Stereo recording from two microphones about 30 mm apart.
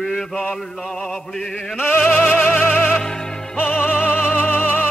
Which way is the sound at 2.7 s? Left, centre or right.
Left.